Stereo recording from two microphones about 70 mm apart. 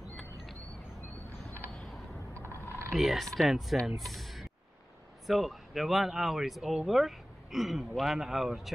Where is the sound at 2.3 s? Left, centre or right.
Right.